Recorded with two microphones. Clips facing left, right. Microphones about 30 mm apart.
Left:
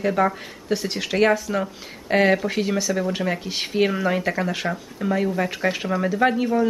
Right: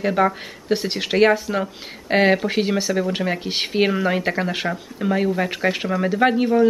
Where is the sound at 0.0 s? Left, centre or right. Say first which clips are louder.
Right 2 dB; right.